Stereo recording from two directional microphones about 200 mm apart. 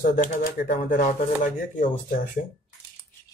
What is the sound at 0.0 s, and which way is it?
Speech, 40° left (ahead or behind).